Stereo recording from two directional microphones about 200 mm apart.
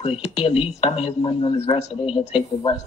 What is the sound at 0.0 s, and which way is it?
A woman's voice, 30° left (ahead or behind).